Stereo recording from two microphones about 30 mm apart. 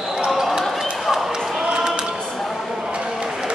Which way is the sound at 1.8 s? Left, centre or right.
Right.